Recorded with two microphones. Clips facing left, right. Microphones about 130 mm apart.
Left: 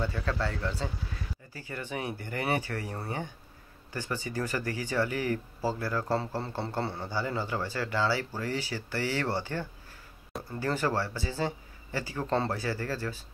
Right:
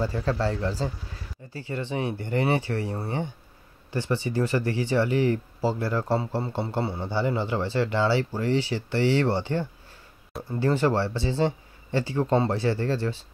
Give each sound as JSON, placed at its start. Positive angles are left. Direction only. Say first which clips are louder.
{"t": 0.0, "sound": "speech", "louder": "right 6 dB", "side_deg": -35}
{"t": 1.7, "sound": "speech", "louder": "right 6 dB", "side_deg": -25}